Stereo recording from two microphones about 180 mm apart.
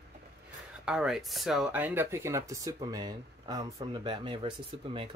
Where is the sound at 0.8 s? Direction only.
5° right (ahead or behind); by 5.1 s 30° right (ahead or behind).